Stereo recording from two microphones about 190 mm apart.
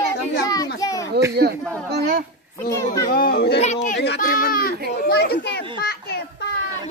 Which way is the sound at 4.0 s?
55° left (ahead or behind).